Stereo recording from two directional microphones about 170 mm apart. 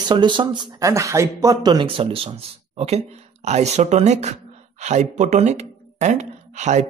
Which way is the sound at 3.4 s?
40° right (ahead or behind).